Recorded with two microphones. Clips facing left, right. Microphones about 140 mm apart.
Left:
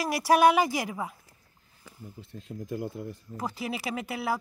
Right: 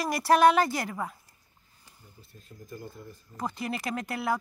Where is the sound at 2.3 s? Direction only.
80° left.